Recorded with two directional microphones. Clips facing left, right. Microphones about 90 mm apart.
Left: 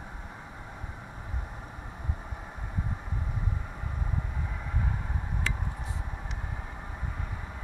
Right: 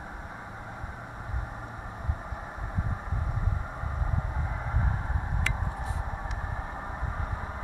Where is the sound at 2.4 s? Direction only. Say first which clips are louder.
Right 2 dB; 25° right (ahead or behind).